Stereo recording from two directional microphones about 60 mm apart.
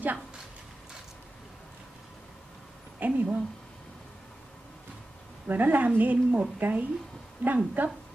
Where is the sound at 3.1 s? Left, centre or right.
Right.